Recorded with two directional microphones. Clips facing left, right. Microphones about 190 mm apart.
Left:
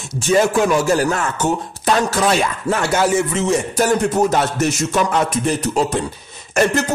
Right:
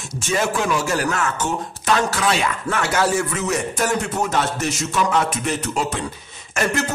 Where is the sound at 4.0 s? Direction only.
40° left (ahead or behind).